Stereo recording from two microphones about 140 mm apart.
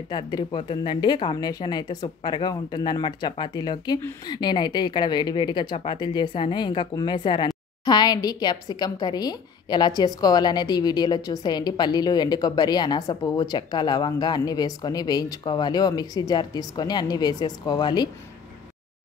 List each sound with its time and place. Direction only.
0.1 s speech: 35° left (ahead or behind)